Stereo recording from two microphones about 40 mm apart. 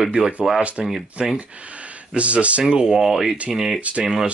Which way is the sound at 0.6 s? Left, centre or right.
Right.